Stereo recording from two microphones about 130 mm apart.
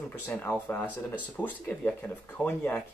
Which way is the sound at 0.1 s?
15° left (ahead or behind).